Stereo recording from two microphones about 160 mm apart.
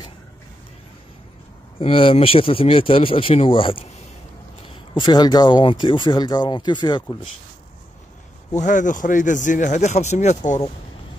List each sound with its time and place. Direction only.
1.8 s speech: 35° left (ahead or behind)
4.9 s speech: 25° left (ahead or behind)
8.5 s speech: 55° left (ahead or behind)